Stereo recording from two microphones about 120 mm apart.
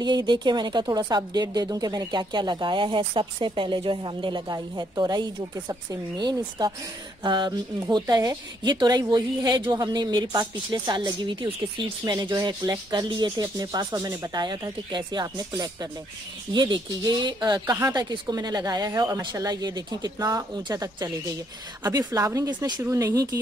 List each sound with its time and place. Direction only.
0.0 s speech: 40° right (ahead or behind)
17.7 s speech: 25° right (ahead or behind)